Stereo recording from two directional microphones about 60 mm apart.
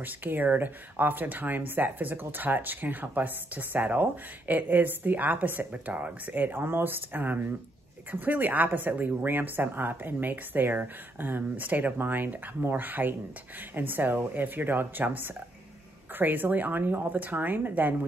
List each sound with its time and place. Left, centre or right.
0.0 s speech: right